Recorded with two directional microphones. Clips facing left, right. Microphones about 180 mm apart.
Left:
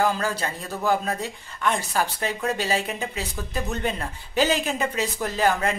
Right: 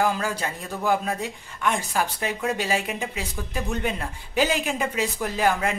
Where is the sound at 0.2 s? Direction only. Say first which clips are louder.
Left 1 dB; 15° right (ahead or behind).